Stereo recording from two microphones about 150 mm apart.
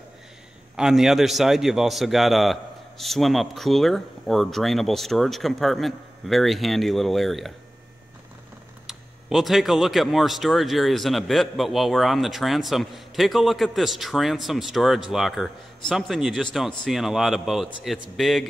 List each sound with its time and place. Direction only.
0.7 s speech: 5° right (ahead or behind)
8.8 s speech: centre (ahead or behind)